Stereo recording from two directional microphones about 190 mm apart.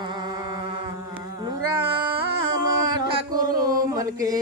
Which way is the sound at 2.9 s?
20° right (ahead or behind).